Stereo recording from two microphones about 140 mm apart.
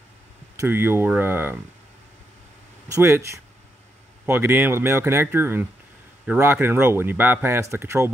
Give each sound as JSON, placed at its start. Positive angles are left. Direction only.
{"t": 0.6, "sound": "speech", "side_deg": -15}
{"t": 2.9, "sound": "speech", "side_deg": -20}